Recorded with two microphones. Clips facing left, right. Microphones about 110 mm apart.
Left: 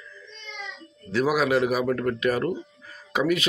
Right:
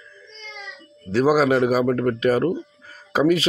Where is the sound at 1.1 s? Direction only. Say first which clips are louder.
Right 5 dB; 35° right (ahead or behind).